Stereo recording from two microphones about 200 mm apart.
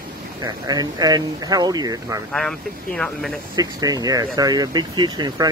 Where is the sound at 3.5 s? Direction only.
20° right (ahead or behind).